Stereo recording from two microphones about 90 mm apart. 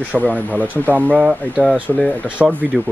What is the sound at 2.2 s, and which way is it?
Speech, 15° right (ahead or behind).